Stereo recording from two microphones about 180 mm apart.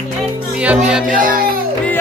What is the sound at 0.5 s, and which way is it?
Speech, 5° right (ahead or behind).